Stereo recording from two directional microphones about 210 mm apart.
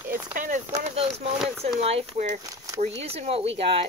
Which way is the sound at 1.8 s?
30° right (ahead or behind).